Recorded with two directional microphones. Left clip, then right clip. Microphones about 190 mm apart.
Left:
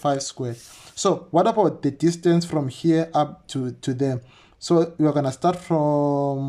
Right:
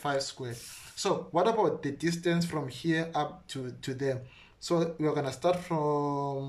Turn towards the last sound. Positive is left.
turn(degrees=35)  # may be behind; listen again after turning